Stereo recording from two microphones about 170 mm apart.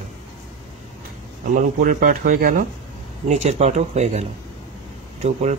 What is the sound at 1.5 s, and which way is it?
Speech, 55° right (ahead or behind).